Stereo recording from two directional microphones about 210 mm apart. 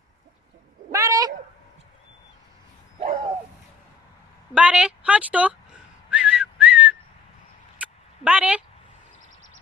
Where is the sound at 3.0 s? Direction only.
30° right (ahead or behind).